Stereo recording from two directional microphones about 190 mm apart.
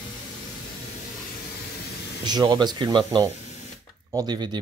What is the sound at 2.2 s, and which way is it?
Speech, 20° right (ahead or behind).